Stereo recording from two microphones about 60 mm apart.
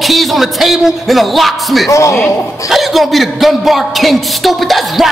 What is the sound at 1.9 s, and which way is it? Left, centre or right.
Speech, left.